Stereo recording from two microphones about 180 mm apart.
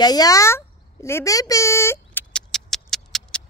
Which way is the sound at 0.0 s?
20° left (ahead or behind).